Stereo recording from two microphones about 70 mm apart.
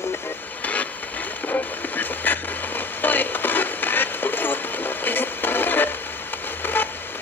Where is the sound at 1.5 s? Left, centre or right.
Left.